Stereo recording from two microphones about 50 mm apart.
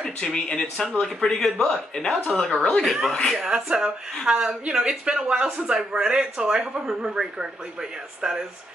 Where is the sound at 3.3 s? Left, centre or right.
Centre.